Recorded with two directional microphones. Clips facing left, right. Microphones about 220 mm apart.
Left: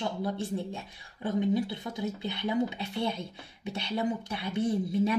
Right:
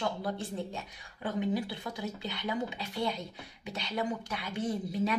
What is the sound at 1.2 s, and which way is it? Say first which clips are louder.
Speech: left 4 dB; 25° left (ahead or behind).